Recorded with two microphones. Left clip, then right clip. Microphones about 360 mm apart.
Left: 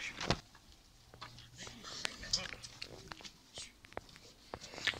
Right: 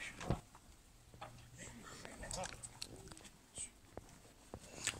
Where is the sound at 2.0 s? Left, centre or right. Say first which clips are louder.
Left 15 dB; left.